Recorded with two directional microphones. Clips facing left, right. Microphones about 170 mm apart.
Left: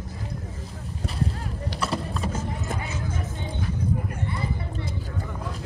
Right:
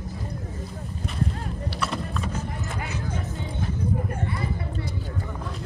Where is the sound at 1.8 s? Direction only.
35° left (ahead or behind).